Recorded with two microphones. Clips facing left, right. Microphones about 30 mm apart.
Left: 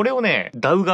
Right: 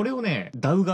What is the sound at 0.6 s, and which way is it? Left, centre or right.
Speech, left.